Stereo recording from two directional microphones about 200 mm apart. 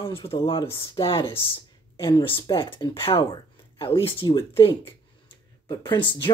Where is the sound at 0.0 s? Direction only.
25° left (ahead or behind).